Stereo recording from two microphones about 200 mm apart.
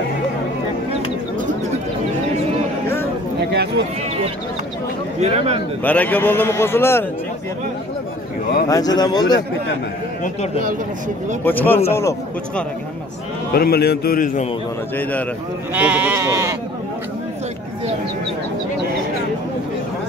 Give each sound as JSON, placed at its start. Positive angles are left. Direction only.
{"t": 5.2, "sound": "speech", "side_deg": -30}
{"t": 5.9, "sound": "a man's voice", "side_deg": 10}
{"t": 8.6, "sound": "speech", "side_deg": 20}
{"t": 10.2, "sound": "speech", "side_deg": 35}
{"t": 11.4, "sound": "a man's voice", "side_deg": 10}
{"t": 13.5, "sound": "a man's voice", "side_deg": 50}
{"t": 15.7, "sound": "sheep", "side_deg": -5}